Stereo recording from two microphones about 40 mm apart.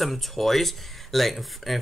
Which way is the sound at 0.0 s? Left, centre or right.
Centre.